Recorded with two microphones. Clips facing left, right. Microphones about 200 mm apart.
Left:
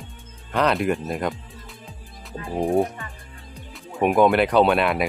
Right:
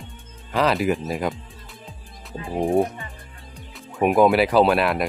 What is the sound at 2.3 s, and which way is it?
Speech, 15° right (ahead or behind).